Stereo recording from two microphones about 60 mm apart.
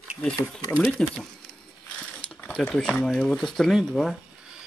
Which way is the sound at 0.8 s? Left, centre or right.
Centre.